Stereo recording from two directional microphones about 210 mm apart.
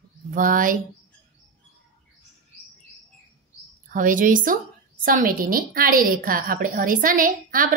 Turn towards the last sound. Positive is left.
turn(degrees=-40)  # may be behind; listen again after turning